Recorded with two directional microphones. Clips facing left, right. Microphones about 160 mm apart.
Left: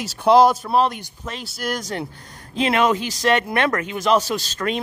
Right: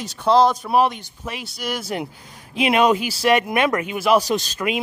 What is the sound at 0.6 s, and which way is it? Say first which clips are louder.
Speech: right 1 dB; 10° right (ahead or behind).